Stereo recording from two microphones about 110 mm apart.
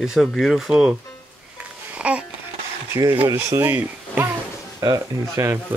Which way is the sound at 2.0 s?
10° right (ahead or behind).